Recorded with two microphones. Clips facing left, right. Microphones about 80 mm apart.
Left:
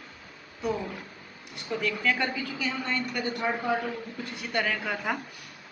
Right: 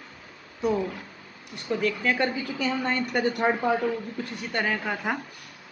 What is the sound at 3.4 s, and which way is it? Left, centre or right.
Speech, right.